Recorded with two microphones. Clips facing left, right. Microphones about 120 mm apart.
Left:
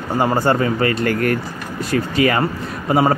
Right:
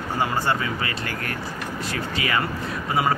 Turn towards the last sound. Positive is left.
turn(degrees=40)  # may be behind; listen again after turning